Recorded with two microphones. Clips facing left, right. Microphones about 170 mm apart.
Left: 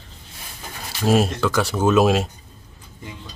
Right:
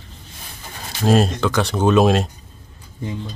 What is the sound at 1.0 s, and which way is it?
A man's voice, 5° left (ahead or behind).